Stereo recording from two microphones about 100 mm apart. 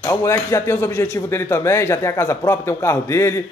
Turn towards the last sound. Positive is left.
turn(degrees=25)  # may be behind; listen again after turning